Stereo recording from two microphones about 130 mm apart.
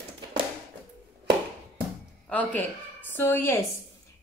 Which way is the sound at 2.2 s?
10° left (ahead or behind).